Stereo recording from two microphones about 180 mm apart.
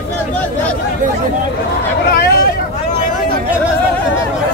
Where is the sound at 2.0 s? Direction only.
60° left (ahead or behind).